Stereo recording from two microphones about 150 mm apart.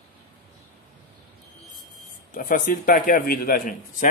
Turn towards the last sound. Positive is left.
turn(degrees=65)  # may be behind; listen again after turning